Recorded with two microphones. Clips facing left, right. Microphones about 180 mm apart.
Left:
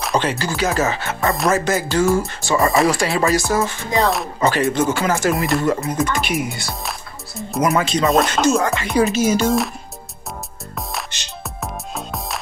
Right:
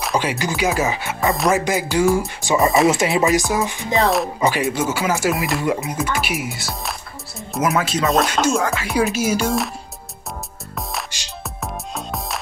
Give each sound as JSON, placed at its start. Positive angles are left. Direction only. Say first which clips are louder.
{"t": 0.0, "sound": "speech", "louder": "left 1 dB", "side_deg": -10}
{"t": 2.6, "sound": "speech", "louder": "right 1 dB", "side_deg": 0}
{"t": 2.9, "sound": "speech", "louder": "right 1 dB", "side_deg": -20}
{"t": 3.9, "sound": "speech", "louder": "right 1 dB", "side_deg": 0}
{"t": 4.4, "sound": "speech", "louder": "left 2 dB", "side_deg": -10}
{"t": 11.6, "sound": "music", "louder": "even", "side_deg": 0}